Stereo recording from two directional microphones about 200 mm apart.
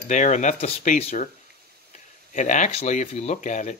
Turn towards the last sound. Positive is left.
turn(degrees=40)  # may be behind; listen again after turning